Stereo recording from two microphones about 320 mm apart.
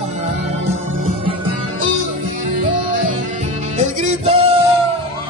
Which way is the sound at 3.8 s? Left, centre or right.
Centre.